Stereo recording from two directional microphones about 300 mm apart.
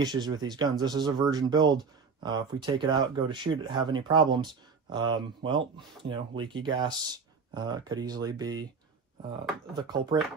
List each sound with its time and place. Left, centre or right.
0.0 s speech: centre